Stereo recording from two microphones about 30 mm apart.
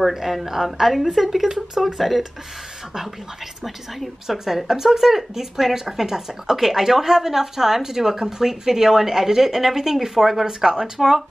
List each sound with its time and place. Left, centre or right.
0.1 s speech: centre
3.6 s speech: centre
10.4 s speech: right
11.0 s speech: centre